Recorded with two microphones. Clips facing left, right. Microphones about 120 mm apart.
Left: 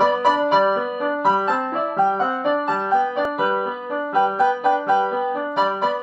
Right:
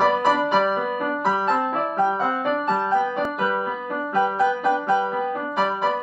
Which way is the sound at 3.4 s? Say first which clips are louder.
Left 3 dB; 25° left (ahead or behind).